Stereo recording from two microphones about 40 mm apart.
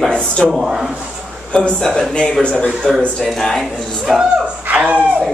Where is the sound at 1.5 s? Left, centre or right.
Left.